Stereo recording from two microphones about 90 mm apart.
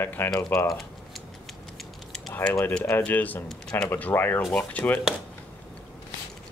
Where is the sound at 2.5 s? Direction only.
30° left (ahead or behind).